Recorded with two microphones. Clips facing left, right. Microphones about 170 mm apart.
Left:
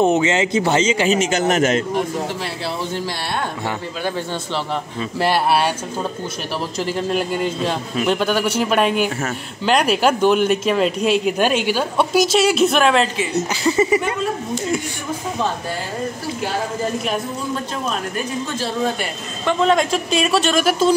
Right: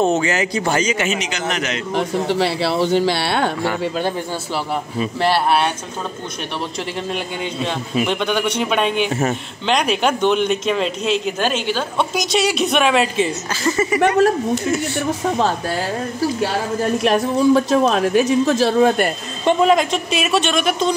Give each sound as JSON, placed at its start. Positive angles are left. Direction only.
{"t": 0.0, "sound": "a man's voice", "side_deg": 20}
{"t": 2.0, "sound": "a man's voice", "side_deg": -80}
{"t": 5.2, "sound": "speech", "side_deg": 5}
{"t": 7.1, "sound": "speech", "side_deg": 0}
{"t": 13.7, "sound": "speech", "side_deg": 20}
{"t": 17.0, "sound": "a man's voice", "side_deg": -85}
{"t": 19.6, "sound": "speech", "side_deg": -5}